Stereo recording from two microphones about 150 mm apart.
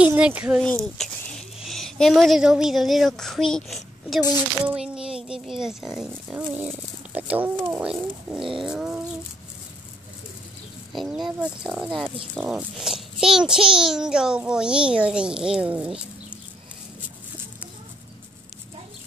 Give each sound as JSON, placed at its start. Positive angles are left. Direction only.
{"t": 0.0, "sound": "speech", "side_deg": -10}
{"t": 1.6, "sound": "speech", "side_deg": 0}
{"t": 8.4, "sound": "bird", "side_deg": -35}
{"t": 8.6, "sound": "a child's voice", "side_deg": -5}
{"t": 10.9, "sound": "a child's voice", "side_deg": 0}